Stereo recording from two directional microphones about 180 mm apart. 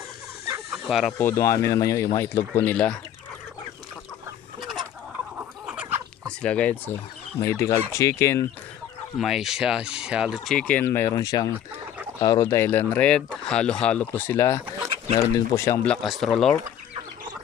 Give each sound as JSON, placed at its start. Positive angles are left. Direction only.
{"t": 0.8, "sound": "speech", "side_deg": 0}
{"t": 1.1, "sound": "speech", "side_deg": 15}
{"t": 5.4, "sound": "a sound", "side_deg": -10}
{"t": 6.2, "sound": "speech", "side_deg": 5}
{"t": 9.2, "sound": "speech", "side_deg": 0}